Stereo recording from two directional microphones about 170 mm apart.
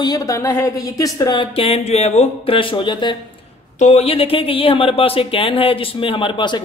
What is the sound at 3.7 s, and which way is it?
Speech, 40° left (ahead or behind).